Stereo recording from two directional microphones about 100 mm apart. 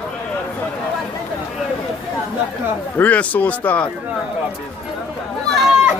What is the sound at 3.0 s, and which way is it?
Speech, 15° left (ahead or behind).